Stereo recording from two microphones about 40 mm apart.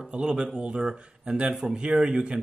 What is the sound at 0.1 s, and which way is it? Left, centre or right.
Speech, right.